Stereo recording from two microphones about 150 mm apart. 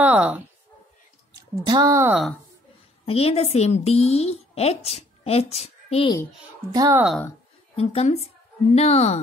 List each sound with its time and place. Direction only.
0.0 s a sound: 10° right (ahead or behind)
1.3 s speech: 25° right (ahead or behind)
3.1 s a woman's voice: 40° left (ahead or behind)
6.7 s speech: 25° right (ahead or behind)
7.7 s a woman's voice: 40° left (ahead or behind)